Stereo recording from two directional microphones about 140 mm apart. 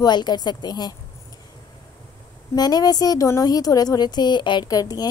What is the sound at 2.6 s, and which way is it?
Speech, 30° left (ahead or behind).